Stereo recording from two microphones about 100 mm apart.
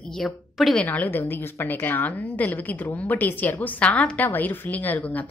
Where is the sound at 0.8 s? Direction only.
20° left (ahead or behind).